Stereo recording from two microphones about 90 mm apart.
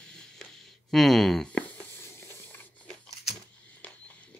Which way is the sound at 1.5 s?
15° left (ahead or behind).